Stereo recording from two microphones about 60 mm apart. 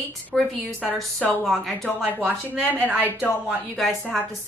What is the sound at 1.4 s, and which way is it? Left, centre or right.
Speech, centre.